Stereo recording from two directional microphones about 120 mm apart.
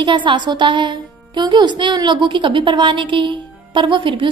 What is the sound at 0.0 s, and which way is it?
A woman's voice, 40° right (ahead or behind).